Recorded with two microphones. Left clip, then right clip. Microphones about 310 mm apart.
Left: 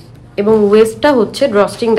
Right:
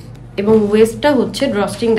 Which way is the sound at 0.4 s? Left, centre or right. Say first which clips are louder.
Left 3 dB; left.